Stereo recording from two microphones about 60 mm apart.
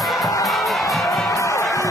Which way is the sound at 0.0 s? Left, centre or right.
Centre.